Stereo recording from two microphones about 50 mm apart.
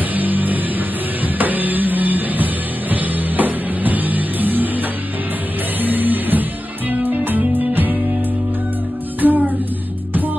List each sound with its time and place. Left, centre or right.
0.1 s music: right
5.8 s music: right
9.2 s music: right